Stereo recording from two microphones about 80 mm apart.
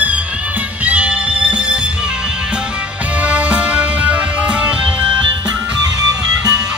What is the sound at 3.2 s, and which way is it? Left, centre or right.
Music, centre.